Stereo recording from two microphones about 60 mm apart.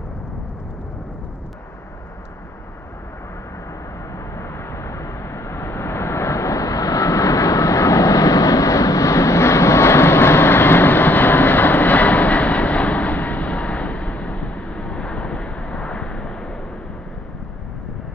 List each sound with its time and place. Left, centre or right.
4.4 s vehicle: left
4.9 s vehicle: left; by 14.3 s centre
14.3 s vehicle: left
14.6 s vehicle: centre